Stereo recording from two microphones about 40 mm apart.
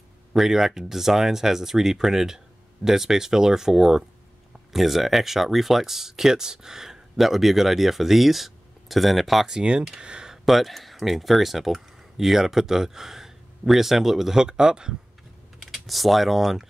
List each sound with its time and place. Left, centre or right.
0.3 s speech: centre
9.5 s speech: centre
10.3 s speech: centre
15.6 s speech: centre